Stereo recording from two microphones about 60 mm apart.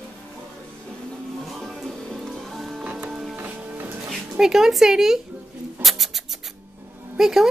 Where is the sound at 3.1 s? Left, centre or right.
Centre.